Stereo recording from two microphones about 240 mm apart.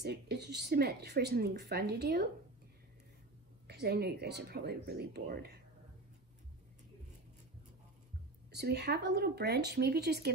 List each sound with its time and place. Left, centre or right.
0.0 s speech: right
3.6 s speech: right
8.5 s speech: right